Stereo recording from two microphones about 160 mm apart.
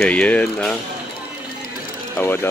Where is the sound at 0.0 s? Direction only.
10° left (ahead or behind).